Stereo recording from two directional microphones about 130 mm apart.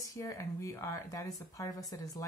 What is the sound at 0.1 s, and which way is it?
Speech, 25° left (ahead or behind).